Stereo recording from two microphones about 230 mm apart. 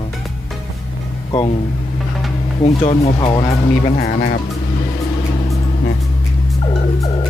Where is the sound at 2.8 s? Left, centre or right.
Left.